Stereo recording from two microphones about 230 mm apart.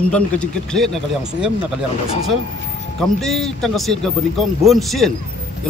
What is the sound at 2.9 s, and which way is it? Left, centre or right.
Speech, centre.